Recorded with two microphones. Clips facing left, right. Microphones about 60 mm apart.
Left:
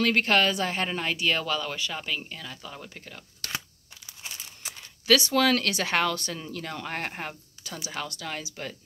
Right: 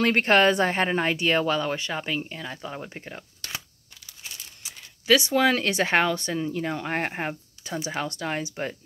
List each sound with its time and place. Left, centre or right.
0.0 s a woman's voice: right
5.0 s speech: centre